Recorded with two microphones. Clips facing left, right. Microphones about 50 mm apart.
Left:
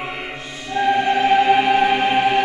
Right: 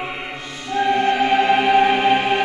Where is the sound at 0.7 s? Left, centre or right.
Centre.